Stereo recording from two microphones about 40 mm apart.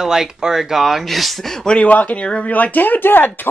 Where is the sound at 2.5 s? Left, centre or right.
Left.